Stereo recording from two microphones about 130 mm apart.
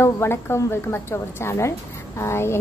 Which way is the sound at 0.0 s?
20° left (ahead or behind).